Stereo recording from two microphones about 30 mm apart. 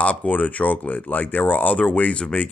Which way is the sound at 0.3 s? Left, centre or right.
Left.